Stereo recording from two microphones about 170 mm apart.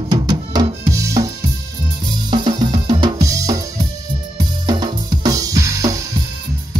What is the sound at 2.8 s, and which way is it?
Drum, 25° right (ahead or behind).